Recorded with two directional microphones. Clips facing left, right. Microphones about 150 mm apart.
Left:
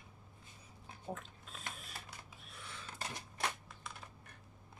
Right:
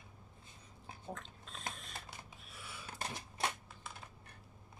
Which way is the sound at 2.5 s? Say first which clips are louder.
Left 1 dB; 5° right (ahead or behind).